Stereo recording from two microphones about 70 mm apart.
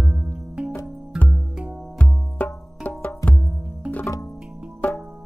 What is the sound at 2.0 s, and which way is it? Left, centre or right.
Music, left.